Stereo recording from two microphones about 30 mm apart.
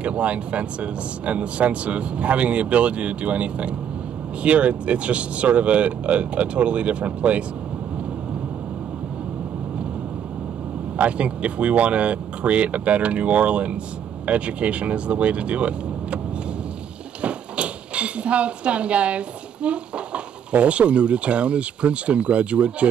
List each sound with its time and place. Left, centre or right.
0.0 s speech: right
11.0 s speech: right
17.2 s dishes: right
20.5 s speech: right